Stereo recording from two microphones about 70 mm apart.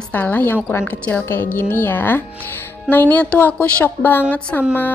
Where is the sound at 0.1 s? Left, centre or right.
Left.